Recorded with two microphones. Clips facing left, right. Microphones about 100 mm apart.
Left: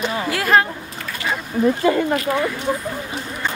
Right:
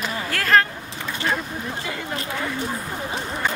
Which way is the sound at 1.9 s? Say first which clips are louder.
Left 13 dB; 45° left (ahead or behind).